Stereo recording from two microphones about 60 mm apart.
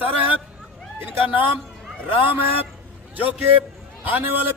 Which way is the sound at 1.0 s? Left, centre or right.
Right.